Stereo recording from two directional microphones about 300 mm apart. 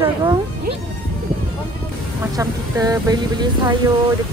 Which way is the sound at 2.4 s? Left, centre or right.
Centre.